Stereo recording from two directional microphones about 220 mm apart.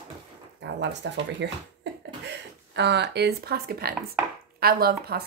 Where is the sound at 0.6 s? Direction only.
50° right (ahead or behind).